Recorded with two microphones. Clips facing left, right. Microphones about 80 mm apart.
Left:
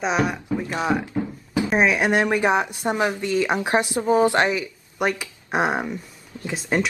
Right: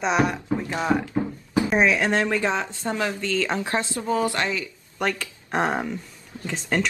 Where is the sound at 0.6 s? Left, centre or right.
Centre.